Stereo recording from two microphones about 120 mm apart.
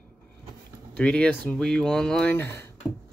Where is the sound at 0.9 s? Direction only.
10° left (ahead or behind).